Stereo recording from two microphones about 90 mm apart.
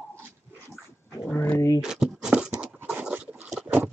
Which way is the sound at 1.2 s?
15° left (ahead or behind).